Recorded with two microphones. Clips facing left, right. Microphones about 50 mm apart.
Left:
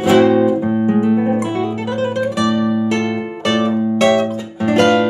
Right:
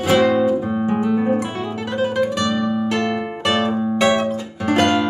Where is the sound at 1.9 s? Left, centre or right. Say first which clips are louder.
Right 1 dB; centre.